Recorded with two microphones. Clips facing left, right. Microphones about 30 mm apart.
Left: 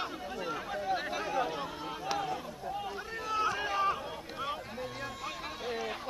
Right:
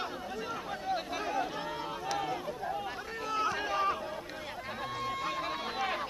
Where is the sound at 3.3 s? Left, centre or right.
Centre.